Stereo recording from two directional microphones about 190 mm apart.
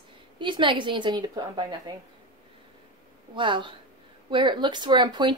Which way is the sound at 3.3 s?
25° right (ahead or behind).